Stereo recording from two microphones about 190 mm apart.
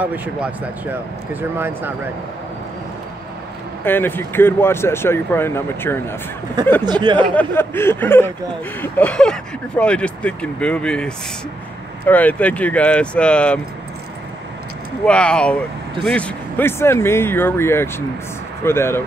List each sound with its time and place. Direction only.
0.0 s speech: 10° right (ahead or behind)
3.8 s speech: 10° left (ahead or behind)
6.8 s speech: 25° right (ahead or behind)
7.3 s speech: 10° left (ahead or behind)
15.0 s speech: 5° left (ahead or behind)